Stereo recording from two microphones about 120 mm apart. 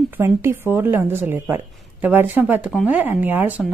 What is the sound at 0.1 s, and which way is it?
A woman's voice, 20° right (ahead or behind).